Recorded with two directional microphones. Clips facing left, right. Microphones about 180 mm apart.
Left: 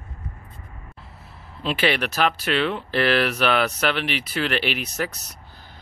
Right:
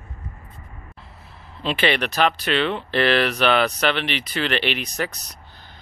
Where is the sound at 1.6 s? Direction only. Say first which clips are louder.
Right 1 dB; 5° left (ahead or behind).